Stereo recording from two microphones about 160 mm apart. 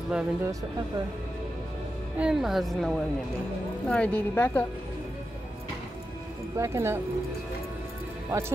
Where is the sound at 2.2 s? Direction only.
5° right (ahead or behind); by 4.6 s 15° left (ahead or behind).